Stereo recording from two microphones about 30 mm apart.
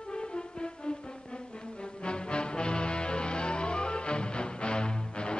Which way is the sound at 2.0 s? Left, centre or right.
Left.